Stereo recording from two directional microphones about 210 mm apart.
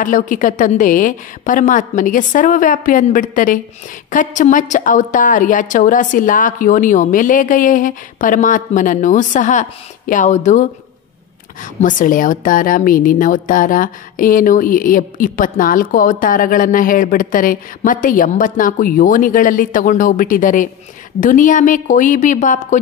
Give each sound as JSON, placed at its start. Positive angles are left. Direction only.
{"t": 0.0, "sound": "a woman's voice", "side_deg": 40}